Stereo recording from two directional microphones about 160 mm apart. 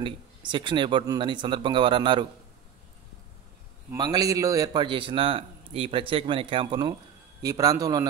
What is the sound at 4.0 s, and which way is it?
A man's voice, 25° right (ahead or behind).